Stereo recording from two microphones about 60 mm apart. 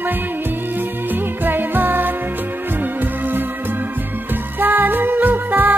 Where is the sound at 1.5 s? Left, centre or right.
Right.